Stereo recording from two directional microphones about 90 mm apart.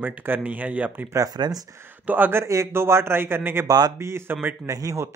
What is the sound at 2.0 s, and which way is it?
Speech, 20° right (ahead or behind).